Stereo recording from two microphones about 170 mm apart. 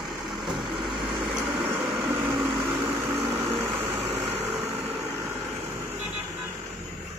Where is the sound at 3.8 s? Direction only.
15° right (ahead or behind).